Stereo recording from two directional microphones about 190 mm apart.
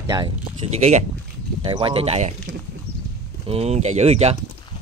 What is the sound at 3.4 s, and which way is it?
Speech, 35° right (ahead or behind).